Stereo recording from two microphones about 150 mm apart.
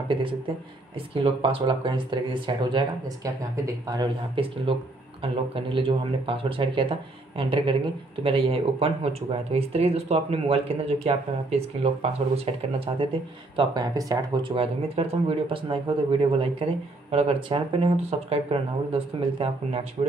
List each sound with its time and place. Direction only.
0.1 s speech: 35° right (ahead or behind)
3.3 s speech: 20° right (ahead or behind)
4.4 s speech: 35° right (ahead or behind)
13.6 s speech: 25° right (ahead or behind)